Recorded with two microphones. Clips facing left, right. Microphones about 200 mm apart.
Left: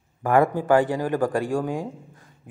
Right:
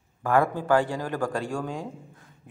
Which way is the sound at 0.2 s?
15° left (ahead or behind).